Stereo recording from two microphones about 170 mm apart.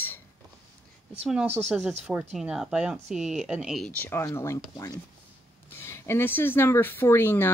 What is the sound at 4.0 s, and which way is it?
Speech, 15° left (ahead or behind).